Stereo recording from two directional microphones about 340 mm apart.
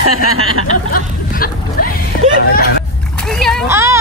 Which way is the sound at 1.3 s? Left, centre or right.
Left.